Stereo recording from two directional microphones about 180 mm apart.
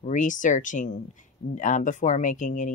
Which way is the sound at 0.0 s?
45° left (ahead or behind).